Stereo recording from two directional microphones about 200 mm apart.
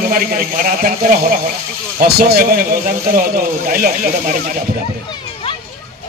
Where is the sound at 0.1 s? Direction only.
45° right (ahead or behind).